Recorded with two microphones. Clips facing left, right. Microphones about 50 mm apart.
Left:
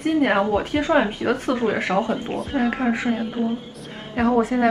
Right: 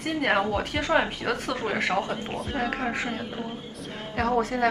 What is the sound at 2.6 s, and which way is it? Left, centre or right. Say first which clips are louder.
A woman's voice: left 8 dB; centre.